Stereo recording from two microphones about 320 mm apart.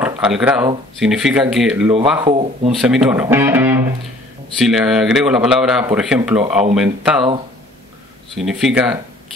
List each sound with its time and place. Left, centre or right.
0.0 s speech: centre
2.2 s speech: centre
2.8 s speech: centre
8.4 s speech: centre